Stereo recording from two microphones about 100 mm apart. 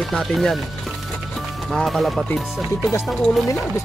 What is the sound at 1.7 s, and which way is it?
Speech, centre (ahead or behind).